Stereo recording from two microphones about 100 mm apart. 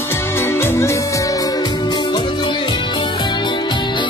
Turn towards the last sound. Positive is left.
turn(degrees=50)  # may be behind; listen again after turning